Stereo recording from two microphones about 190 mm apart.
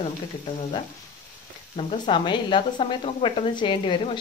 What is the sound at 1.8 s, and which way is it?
Speech, 25° left (ahead or behind).